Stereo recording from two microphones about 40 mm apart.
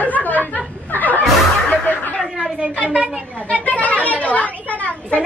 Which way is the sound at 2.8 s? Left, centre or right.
Right.